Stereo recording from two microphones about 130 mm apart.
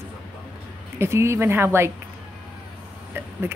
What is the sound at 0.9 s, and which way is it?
Speech, 20° right (ahead or behind).